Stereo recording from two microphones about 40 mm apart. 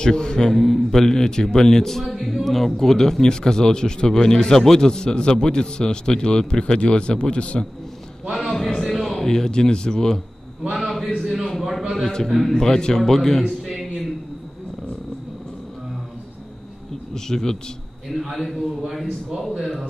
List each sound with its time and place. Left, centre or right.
0.0 s speech: centre
0.5 s a man's voice: centre; by 7.6 s left
8.4 s music: centre
8.6 s music: centre
8.9 s a sound: centre
9.3 s speech: centre
11.1 s a sound: centre
12.0 s a man's voice: centre
12.3 s a man's voice: centre
13.4 s a sound: centre
17.1 s a man's voice: centre
18.1 s a man's voice: centre
19.6 s a man's voice: centre